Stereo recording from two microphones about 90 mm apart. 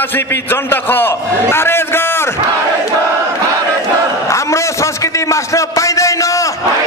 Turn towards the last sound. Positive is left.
turn(degrees=35)  # may be behind; listen again after turning